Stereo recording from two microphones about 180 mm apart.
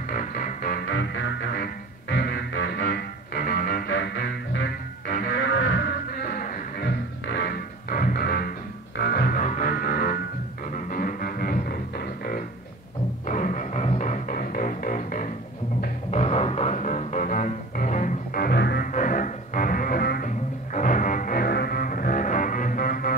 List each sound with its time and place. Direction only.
0.1 s music: 50° left (ahead or behind)
0.8 s music: 85° left; by 11.8 s 55° left (ahead or behind)
13.3 s music: 45° left (ahead or behind); by 18.9 s 60° left (ahead or behind)
18.9 s music: 45° left (ahead or behind)